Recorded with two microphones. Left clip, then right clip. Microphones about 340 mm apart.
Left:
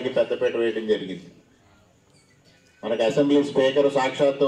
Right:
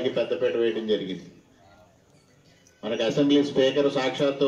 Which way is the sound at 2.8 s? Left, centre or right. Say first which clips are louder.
Left 3 dB; left.